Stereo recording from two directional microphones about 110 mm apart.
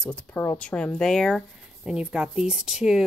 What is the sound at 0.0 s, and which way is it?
Speech, 10° left (ahead or behind).